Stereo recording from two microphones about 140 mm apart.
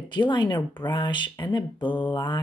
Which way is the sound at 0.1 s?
35° left (ahead or behind).